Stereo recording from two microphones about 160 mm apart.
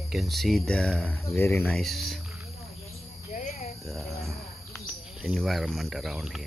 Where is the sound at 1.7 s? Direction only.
Centre (ahead or behind).